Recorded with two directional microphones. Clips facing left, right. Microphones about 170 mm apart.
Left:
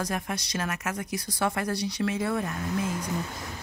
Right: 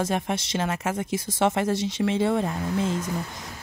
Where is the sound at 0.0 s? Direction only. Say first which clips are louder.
Right 5 dB; 25° right (ahead or behind).